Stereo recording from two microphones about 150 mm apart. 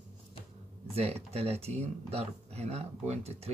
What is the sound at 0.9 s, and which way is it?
Speech, 45° right (ahead or behind).